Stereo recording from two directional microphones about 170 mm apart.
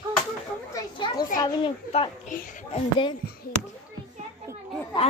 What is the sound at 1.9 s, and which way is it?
A child's voice, 40° left (ahead or behind).